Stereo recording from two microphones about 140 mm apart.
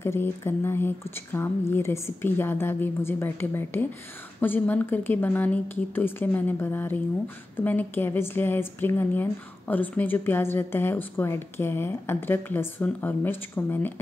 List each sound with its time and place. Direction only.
0.0 s speech: 15° left (ahead or behind)